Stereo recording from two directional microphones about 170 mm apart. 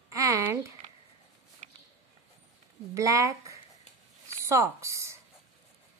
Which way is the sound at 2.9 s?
20° right (ahead or behind).